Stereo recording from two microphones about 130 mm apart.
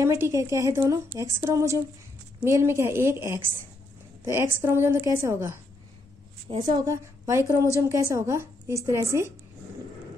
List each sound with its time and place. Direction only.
0.0 s a woman's voice: 25° right (ahead or behind)
6.6 s a woman's voice: 30° right (ahead or behind)